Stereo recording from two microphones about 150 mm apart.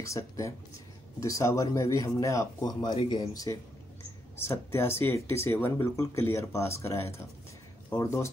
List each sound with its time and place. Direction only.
0.0 s speech: 20° left (ahead or behind)